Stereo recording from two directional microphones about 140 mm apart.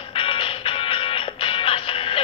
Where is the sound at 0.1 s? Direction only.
40° left (ahead or behind).